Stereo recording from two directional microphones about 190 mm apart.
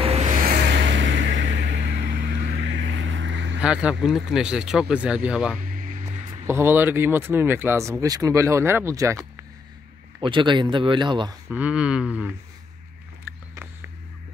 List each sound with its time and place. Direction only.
0.0 s vehicle: 35° right (ahead or behind); by 3.5 s 70° right (ahead or behind)
3.6 s speech: 5° right (ahead or behind)
5.6 s a sound: 45° right (ahead or behind)
6.4 s speech: 15° right (ahead or behind)
10.2 s speech: 25° right (ahead or behind)
11.5 s speech: 5° right (ahead or behind)